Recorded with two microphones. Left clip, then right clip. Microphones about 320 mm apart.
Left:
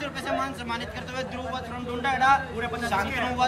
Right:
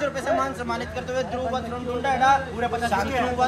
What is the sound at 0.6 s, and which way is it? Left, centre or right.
Speech, centre.